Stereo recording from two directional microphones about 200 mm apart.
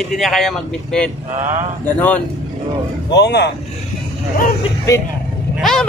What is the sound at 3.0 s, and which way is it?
Speech, 60° left (ahead or behind).